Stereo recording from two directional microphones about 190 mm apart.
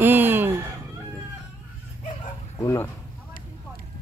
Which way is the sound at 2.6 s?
15° left (ahead or behind).